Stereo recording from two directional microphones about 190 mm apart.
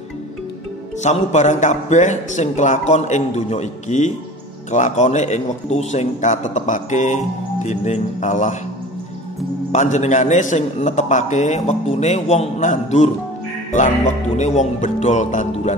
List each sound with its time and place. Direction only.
1.0 s a man's voice: 40° left (ahead or behind)
9.7 s a man's voice: 40° left (ahead or behind)